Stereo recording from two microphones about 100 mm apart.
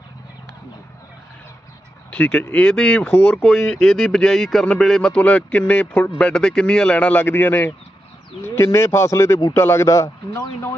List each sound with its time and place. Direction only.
2.0 s speech: 15° left (ahead or behind); by 10.7 s 30° left (ahead or behind)